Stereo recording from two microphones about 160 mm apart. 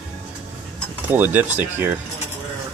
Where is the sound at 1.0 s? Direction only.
10° right (ahead or behind).